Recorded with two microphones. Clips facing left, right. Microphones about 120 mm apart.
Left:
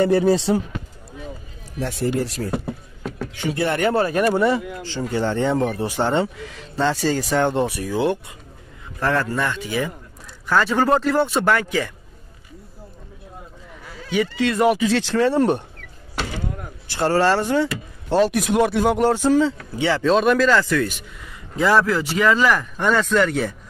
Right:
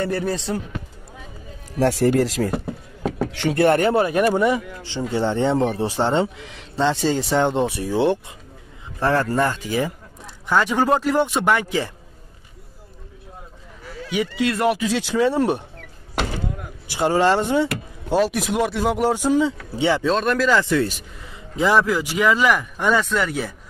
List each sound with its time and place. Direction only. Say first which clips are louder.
0.0 s speech: left 7 dB; 15° left (ahead or behind)
1.8 s speech: right 6 dB; 85° right
3.3 s speech: right 3 dB; 65° right (ahead or behind)
3.9 s a man's voice: right 1 dB; 15° right (ahead or behind); by 9.9 s 35° right (ahead or behind)
10.4 s speech: even; 15° right (ahead or behind)
14.1 s speech: left 1 dB; 10° right (ahead or behind)
14.5 s speech: left 4 dB; centre (ahead or behind)
16.8 s speech: even; 15° right (ahead or behind)
18.1 s speech: left 2 dB; centre (ahead or behind)
19.7 s a man's voice: right 1 dB; 20° right (ahead or behind)
20.1 s speech: left 3 dB; centre (ahead or behind)
20.6 s a man's voice: right 1 dB; 25° right (ahead or behind); by 23.5 s 5° right (ahead or behind)